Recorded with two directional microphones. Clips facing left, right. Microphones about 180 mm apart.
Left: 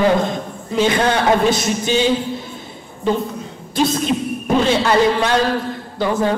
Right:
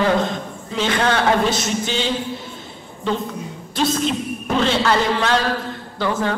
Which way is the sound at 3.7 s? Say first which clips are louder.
Left 3 dB; 10° left (ahead or behind).